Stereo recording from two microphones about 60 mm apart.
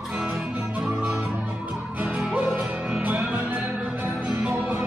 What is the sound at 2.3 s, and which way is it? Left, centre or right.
Music, right.